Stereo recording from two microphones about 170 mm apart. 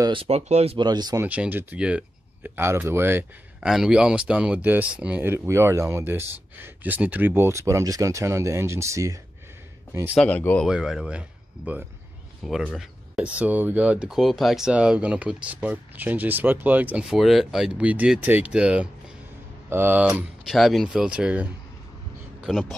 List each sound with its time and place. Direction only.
0.0 s speech: 30° right (ahead or behind)
0.8 s speech: 25° right (ahead or behind)
1.2 s speech: 10° right (ahead or behind)
10.1 s speech: 10° left (ahead or behind)
10.7 s speech: 5° right (ahead or behind)